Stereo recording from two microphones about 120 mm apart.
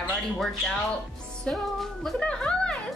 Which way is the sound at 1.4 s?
Centre (ahead or behind).